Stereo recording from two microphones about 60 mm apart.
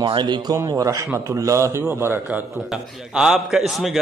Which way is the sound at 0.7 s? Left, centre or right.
Right.